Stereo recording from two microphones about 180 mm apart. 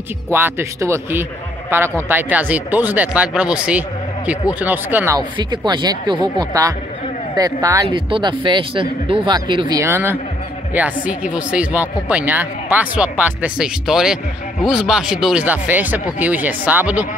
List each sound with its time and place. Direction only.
0.3 s speech: 15° right (ahead or behind)